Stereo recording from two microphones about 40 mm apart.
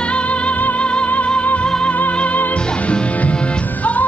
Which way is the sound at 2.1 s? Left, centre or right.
Left.